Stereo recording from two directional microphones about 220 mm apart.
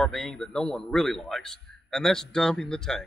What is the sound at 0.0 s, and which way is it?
Speech, 5° left (ahead or behind).